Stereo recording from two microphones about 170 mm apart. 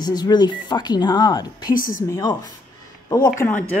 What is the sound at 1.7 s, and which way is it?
Speech, 55° left (ahead or behind).